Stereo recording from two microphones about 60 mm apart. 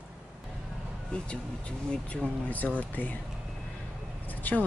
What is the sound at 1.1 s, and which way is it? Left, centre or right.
Speech, centre.